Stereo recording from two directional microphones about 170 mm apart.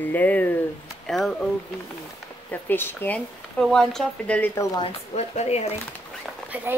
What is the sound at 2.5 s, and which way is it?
A woman's voice, 10° left (ahead or behind).